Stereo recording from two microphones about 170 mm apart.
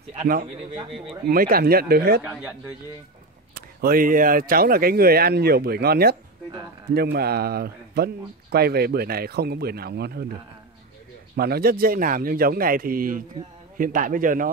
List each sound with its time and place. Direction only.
1.2 s speech: 60° right (ahead or behind)
3.8 s speech: 55° right (ahead or behind)
11.3 s a man's voice: 65° right (ahead or behind)